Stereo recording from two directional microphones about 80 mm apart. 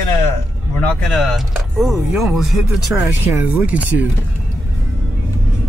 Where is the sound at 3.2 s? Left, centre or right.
Right.